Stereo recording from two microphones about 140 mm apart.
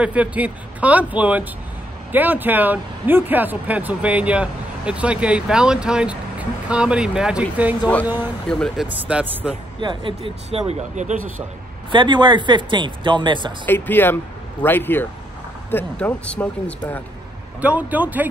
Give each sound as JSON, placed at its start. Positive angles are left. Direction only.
{"t": 0.0, "sound": "speech", "side_deg": -10}
{"t": 8.5, "sound": "speech", "side_deg": 5}
{"t": 9.0, "sound": "speech", "side_deg": -10}
{"t": 9.8, "sound": "speech", "side_deg": -35}
{"t": 10.7, "sound": "speech", "side_deg": -60}
{"t": 11.9, "sound": "speech", "side_deg": -35}
{"t": 13.7, "sound": "speech", "side_deg": 15}
{"t": 17.6, "sound": "speech", "side_deg": -10}